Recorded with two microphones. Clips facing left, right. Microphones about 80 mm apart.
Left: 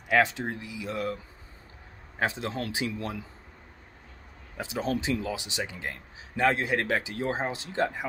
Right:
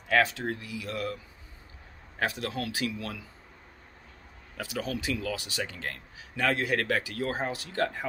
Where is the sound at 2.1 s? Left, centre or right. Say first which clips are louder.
Left 1 dB; left.